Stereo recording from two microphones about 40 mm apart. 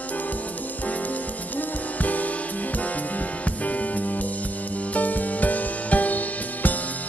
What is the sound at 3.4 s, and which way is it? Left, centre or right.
Music, left.